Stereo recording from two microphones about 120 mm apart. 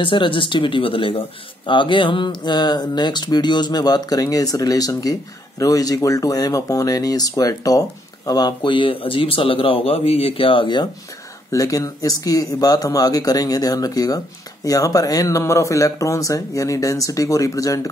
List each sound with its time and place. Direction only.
0.0 s speech: 45° left (ahead or behind)
11.5 s speech: 30° left (ahead or behind)